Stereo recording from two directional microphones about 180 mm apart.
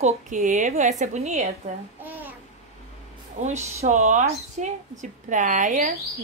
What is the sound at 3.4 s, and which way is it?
A woman's voice, 40° right (ahead or behind).